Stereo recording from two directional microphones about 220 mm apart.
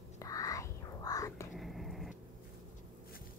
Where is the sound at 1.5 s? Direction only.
Centre (ahead or behind).